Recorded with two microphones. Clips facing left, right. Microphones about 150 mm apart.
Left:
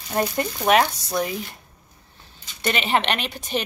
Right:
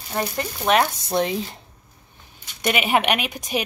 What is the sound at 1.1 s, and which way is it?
Speech, 25° right (ahead or behind).